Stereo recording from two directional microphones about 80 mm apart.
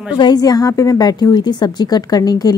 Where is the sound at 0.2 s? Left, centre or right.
Left.